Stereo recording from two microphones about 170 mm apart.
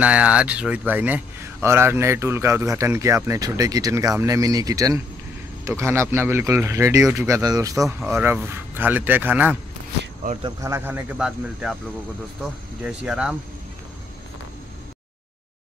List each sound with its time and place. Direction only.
0.0 s speech: 5° right (ahead or behind)
12.8 s speech: 5° right (ahead or behind)